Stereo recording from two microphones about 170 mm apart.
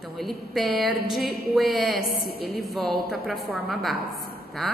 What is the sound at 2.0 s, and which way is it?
Speech, 65° left (ahead or behind).